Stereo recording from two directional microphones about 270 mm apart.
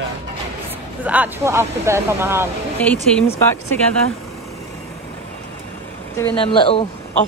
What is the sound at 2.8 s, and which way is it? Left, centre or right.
Speech, centre.